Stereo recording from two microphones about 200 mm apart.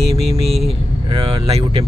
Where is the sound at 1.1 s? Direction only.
30° right (ahead or behind).